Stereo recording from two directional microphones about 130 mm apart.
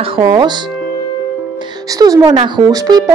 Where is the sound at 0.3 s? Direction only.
35° right (ahead or behind).